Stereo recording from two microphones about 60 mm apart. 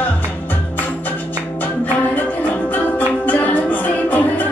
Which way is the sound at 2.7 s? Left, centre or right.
Left.